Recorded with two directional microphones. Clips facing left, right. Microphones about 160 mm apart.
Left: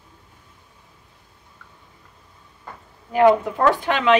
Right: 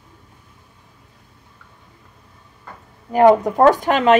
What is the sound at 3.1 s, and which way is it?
Speech, 40° right (ahead or behind).